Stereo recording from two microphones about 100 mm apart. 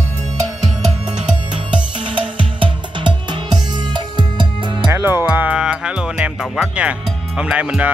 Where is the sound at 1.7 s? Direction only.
55° right (ahead or behind).